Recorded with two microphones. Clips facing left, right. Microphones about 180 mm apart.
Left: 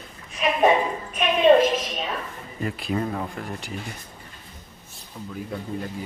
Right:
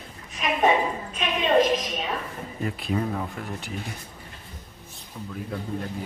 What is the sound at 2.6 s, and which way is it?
A man's voice, centre (ahead or behind).